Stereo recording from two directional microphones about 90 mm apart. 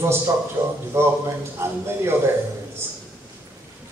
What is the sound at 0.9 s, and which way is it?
Speech, 30° right (ahead or behind).